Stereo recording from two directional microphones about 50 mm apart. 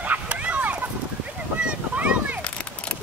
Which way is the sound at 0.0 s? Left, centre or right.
Right.